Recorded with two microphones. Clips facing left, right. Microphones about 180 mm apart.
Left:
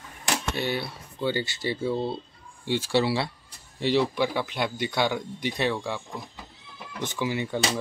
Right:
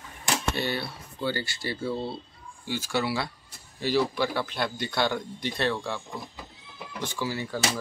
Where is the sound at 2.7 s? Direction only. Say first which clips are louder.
Left 4 dB; 30° left (ahead or behind).